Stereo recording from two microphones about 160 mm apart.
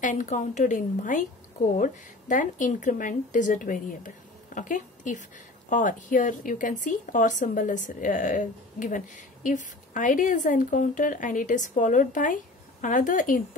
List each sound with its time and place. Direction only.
0.0 s a woman's voice: 50° left (ahead or behind)